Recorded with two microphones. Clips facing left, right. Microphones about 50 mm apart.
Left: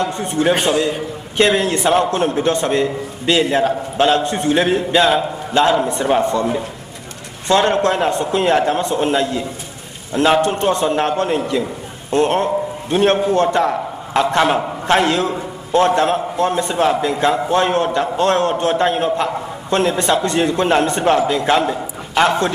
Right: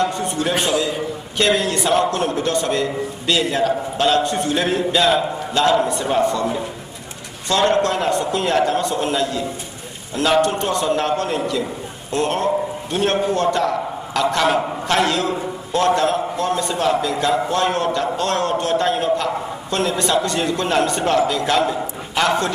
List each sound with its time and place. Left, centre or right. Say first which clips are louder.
0.0 s a man's voice: left 3 dB; left
7.4 s a man's voice: left 2 dB; left